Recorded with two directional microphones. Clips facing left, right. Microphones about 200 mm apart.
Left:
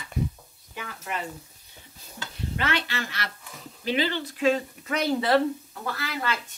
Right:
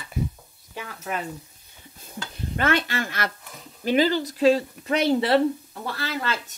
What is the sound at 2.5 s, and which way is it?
Speech, 50° right (ahead or behind).